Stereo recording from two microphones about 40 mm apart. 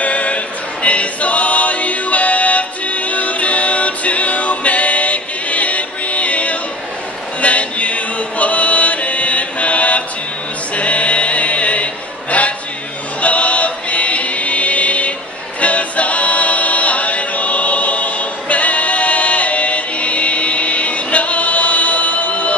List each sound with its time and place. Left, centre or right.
0.0 s a sound: left
0.8 s music: left
7.4 s chant: left
10.7 s a sound: left
13.2 s choir: left
15.6 s music: left